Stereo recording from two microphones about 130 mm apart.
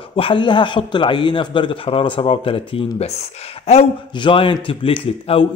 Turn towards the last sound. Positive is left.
turn(degrees=45)  # may be behind; listen again after turning